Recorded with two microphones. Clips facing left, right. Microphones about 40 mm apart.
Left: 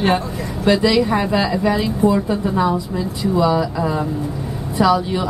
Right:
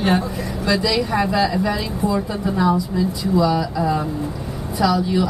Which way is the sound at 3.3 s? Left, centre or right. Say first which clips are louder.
Left 1 dB; left.